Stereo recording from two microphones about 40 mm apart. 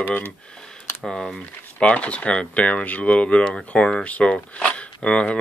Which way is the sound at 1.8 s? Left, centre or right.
Left.